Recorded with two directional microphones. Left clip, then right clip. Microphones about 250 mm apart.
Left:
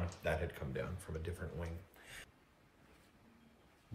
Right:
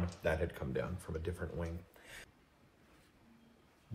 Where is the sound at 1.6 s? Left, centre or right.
Centre.